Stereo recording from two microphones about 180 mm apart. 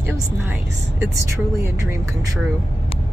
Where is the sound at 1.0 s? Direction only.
15° right (ahead or behind).